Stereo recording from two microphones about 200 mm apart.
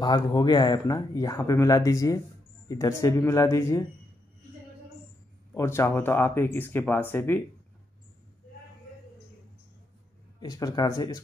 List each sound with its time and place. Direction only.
0.0 s speech: 20° left (ahead or behind)
5.5 s speech: 15° left (ahead or behind)
10.4 s speech: 20° left (ahead or behind)